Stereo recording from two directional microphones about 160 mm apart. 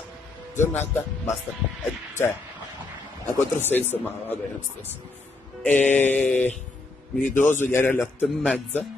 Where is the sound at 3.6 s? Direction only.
10° left (ahead or behind).